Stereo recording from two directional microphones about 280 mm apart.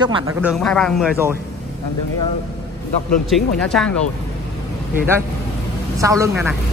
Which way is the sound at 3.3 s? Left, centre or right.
Centre.